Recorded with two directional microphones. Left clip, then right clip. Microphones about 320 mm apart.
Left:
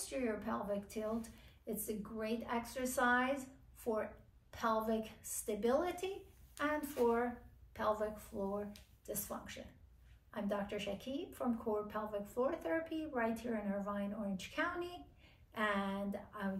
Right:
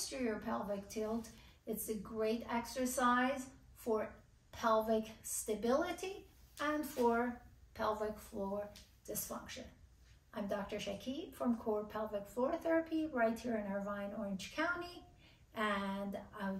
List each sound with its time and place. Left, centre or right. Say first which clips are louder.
0.1 s a woman's voice: left 2 dB; centre
10.3 s a woman's voice: left 1 dB; centre